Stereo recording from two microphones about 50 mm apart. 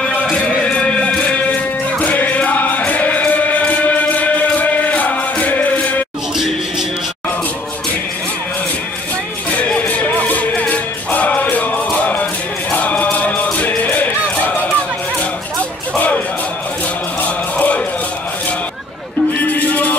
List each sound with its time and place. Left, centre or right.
0.3 s music: centre
9.8 s music: left
12.7 s chant: left
13.5 s music: left
13.8 s run: left
17.6 s a sound: left
19.4 s music: left